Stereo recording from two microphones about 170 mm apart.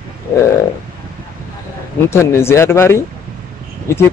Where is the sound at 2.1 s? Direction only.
15° left (ahead or behind).